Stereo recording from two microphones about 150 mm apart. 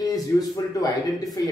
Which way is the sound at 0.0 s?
25° left (ahead or behind).